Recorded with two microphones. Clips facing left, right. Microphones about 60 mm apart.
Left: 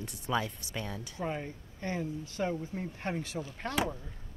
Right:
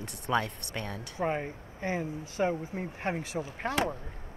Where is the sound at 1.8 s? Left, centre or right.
Centre.